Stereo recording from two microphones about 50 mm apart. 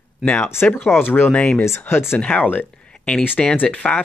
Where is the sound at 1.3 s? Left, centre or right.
Left.